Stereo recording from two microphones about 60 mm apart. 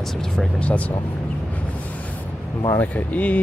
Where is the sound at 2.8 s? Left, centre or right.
Left.